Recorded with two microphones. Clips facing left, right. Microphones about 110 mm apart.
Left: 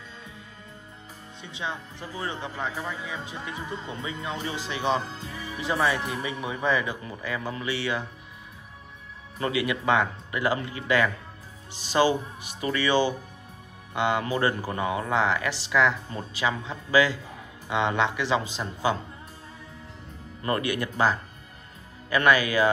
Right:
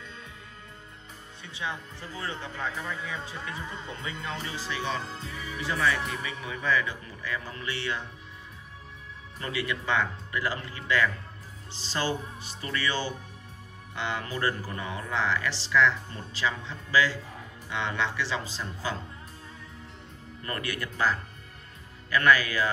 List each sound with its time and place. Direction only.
1.4 s speech: 20° left (ahead or behind)
5.1 s music: centre (ahead or behind)
5.6 s speech: 25° left (ahead or behind)
9.4 s speech: 15° left (ahead or behind)
20.4 s speech: 20° left (ahead or behind)